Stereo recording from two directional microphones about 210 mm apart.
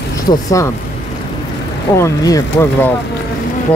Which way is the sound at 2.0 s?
15° left (ahead or behind).